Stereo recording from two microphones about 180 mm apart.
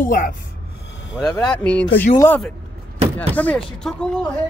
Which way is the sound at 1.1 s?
5° left (ahead or behind).